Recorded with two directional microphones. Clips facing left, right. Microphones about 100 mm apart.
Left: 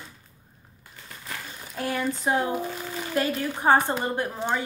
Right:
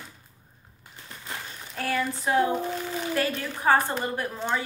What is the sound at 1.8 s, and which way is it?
Speech, 20° left (ahead or behind).